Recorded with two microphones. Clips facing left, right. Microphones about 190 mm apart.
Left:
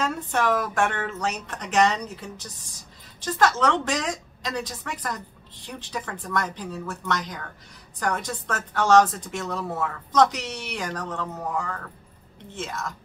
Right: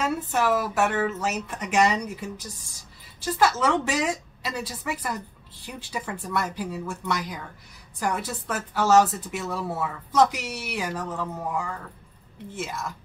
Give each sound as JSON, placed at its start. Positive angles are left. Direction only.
{"t": 0.0, "sound": "a woman's voice", "side_deg": -5}